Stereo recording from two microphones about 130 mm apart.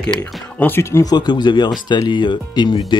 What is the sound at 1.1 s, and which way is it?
Speech, 35° left (ahead or behind).